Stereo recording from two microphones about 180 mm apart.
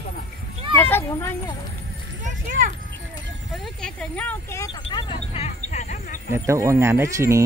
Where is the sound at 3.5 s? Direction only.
5° left (ahead or behind).